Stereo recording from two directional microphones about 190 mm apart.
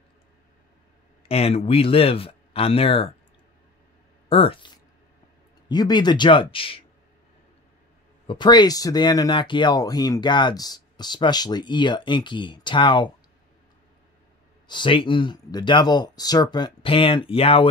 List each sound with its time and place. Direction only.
1.3 s speech: 30° left (ahead or behind)
4.3 s speech: 30° left (ahead or behind)
8.3 s speech: 25° left (ahead or behind)
14.7 s speech: 25° left (ahead or behind)